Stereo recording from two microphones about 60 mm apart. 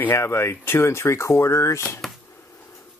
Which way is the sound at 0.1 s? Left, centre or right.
Left.